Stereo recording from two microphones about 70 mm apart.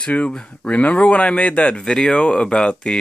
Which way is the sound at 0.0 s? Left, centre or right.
Centre.